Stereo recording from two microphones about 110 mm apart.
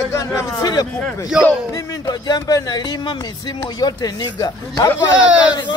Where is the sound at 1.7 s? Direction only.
40° left (ahead or behind).